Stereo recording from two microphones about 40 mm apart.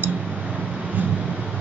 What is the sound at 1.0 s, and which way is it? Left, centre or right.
Vehicle, right.